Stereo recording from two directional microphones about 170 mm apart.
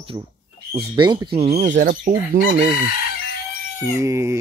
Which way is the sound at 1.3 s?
40° right (ahead or behind).